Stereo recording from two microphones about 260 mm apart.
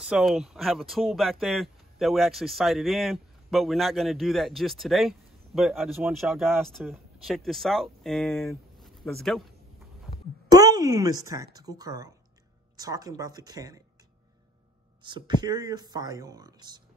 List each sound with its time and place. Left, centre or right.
0.0 s speech: centre
10.5 s speech: centre
15.0 s speech: centre